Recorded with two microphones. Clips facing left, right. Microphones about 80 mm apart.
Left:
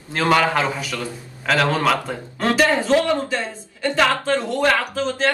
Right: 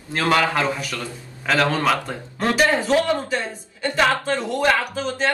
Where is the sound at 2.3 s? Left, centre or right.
Centre.